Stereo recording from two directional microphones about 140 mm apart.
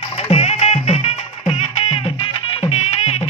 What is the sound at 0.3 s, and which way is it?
Music, 45° left (ahead or behind).